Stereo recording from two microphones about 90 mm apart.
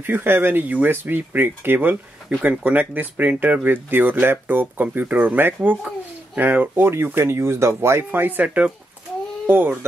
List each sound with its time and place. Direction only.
0.0 s speech: 25° right (ahead or behind)